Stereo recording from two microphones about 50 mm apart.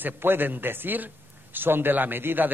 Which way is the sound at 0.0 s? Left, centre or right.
Right.